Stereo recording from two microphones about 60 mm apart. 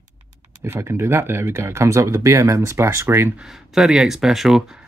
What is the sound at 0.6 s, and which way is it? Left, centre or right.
Speech, right.